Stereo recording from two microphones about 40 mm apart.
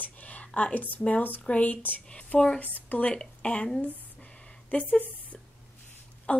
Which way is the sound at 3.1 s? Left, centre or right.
Left.